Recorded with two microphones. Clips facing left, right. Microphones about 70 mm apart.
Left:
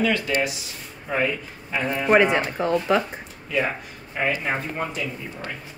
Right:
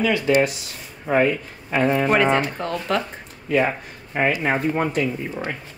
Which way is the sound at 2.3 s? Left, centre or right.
Centre.